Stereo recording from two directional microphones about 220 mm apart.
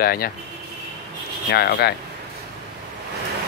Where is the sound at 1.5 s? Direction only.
50° left (ahead or behind).